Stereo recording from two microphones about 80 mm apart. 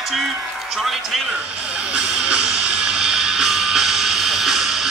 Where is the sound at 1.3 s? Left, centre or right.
Centre.